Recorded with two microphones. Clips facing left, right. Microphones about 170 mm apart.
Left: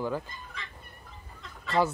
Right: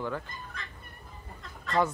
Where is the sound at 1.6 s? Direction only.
5° left (ahead or behind).